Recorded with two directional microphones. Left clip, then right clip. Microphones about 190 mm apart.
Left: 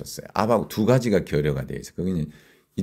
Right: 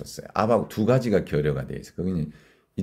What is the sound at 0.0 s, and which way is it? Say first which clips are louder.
Speech: even; 20° left (ahead or behind).